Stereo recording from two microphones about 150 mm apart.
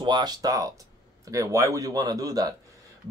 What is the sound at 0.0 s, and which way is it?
Speech, 30° right (ahead or behind).